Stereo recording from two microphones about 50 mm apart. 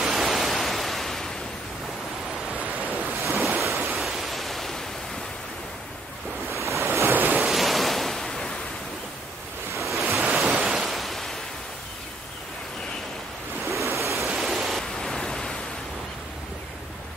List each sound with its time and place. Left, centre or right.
0.0 s pink noise: centre
3.6 s pink noise: centre
6.5 s waves: right
6.9 s waves: right
7.4 s waves: centre
9.8 s waves: centre
13.7 s waves: right
14.1 s waterfall: centre
15.0 s pink noise: centre